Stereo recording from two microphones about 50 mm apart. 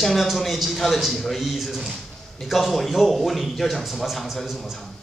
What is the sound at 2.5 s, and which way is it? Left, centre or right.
Speech, centre.